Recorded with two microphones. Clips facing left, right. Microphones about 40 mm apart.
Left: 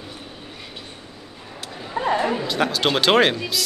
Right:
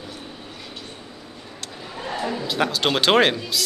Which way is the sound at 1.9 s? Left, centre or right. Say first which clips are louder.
Left 7 dB; left.